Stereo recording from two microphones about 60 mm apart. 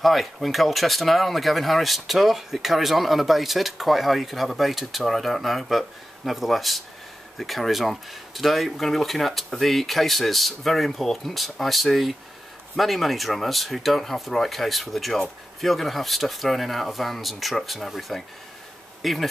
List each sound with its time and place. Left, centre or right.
0.0 s speech: centre